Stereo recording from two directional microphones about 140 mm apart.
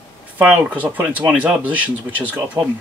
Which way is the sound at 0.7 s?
10° right (ahead or behind).